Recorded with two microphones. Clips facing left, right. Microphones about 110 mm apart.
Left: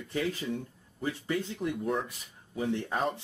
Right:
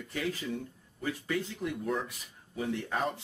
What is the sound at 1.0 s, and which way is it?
Speech, 30° left (ahead or behind).